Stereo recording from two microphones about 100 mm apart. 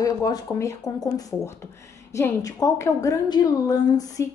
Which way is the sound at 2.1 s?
35° left (ahead or behind).